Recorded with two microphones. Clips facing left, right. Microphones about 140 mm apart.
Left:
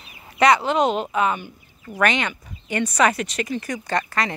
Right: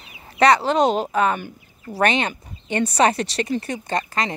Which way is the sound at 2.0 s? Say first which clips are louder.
Right 1 dB; 25° right (ahead or behind).